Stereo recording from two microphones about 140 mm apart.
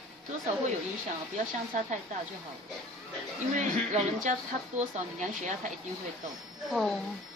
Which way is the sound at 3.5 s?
60° right (ahead or behind).